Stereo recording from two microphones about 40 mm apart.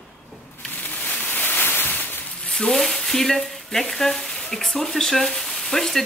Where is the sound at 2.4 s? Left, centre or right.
Centre.